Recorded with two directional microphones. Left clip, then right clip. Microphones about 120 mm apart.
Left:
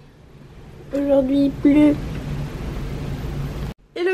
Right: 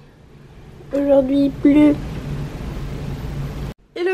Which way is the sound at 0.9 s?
20° right (ahead or behind).